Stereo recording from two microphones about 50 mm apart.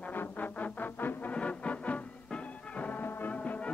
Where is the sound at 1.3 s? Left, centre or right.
Left.